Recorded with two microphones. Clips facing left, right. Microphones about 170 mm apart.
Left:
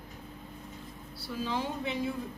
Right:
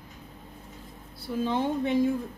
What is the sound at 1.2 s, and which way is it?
Speech, 50° right (ahead or behind).